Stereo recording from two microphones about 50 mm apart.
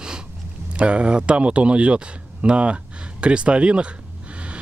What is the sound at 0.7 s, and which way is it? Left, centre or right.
A man's voice, right.